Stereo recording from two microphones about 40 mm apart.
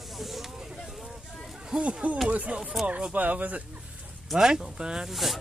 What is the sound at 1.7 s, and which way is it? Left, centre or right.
Speech, right.